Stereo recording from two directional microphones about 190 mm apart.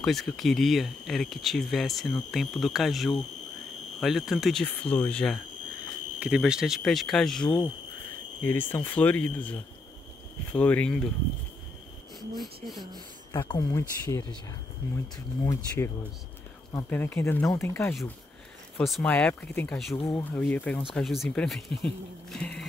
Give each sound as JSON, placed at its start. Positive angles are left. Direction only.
{"t": 0.0, "sound": "speech", "side_deg": 0}
{"t": 6.1, "sound": "speech", "side_deg": -5}
{"t": 7.4, "sound": "speech", "side_deg": 25}
{"t": 8.5, "sound": "speech", "side_deg": 10}
{"t": 12.6, "sound": "speech", "side_deg": 0}
{"t": 13.3, "sound": "speech", "side_deg": 20}
{"t": 15.4, "sound": "speech", "side_deg": 15}